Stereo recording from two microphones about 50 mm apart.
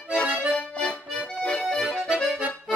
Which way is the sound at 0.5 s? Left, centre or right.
Left.